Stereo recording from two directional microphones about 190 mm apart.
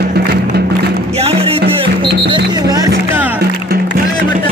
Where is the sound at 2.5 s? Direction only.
20° right (ahead or behind).